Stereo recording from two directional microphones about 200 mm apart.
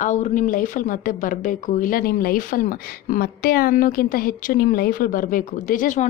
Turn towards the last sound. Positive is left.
turn(degrees=40)  # may be behind; listen again after turning